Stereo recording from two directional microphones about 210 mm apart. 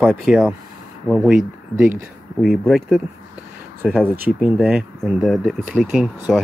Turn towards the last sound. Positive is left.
turn(degrees=0)  # may be behind; listen again after turning